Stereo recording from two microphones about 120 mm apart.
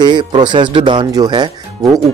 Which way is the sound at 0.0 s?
40° right (ahead or behind).